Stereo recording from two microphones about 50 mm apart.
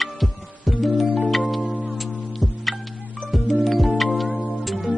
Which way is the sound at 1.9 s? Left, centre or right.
Centre.